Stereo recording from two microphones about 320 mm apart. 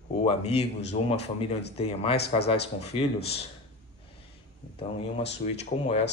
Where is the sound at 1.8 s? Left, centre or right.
Centre.